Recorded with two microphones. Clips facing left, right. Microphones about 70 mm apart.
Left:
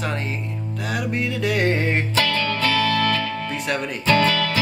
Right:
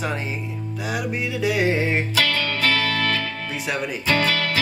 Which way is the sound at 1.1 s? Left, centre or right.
Centre.